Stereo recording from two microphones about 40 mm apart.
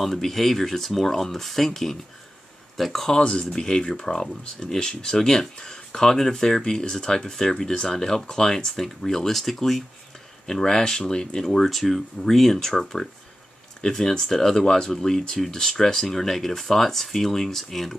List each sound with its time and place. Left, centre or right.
0.0 s speech: centre
3.1 s speech: left; by 9.8 s centre
10.4 s speech: centre